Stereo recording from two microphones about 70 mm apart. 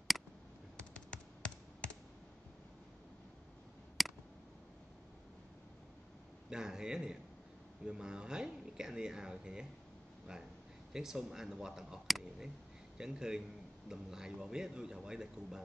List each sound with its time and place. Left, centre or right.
0.9 s tap: centre
4.0 s a sound: centre
6.5 s speech: centre
10.9 s a man's voice: centre